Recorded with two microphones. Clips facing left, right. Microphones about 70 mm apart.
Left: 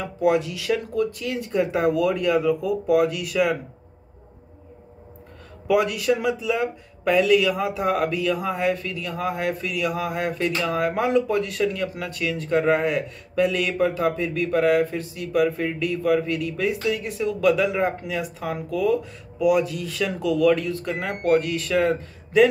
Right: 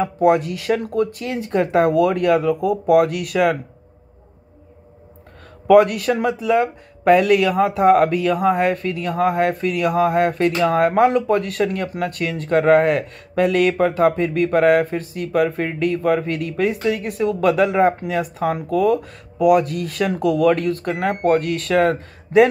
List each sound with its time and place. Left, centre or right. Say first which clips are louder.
0.0 s speech: right 5 dB; right
5.7 s speech: right 7 dB; right